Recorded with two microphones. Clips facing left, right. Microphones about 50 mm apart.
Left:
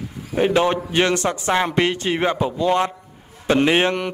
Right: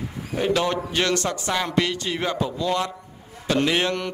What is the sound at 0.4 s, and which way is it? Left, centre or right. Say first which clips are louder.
A man's voice: left 5 dB; left.